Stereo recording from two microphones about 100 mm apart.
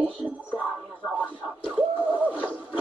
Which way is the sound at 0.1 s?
15° right (ahead or behind).